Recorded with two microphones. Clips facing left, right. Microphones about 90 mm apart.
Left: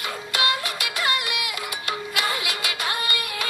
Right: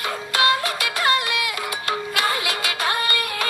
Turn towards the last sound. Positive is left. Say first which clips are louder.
# right 4 dB
turn(degrees=-40)  # may be behind; listen again after turning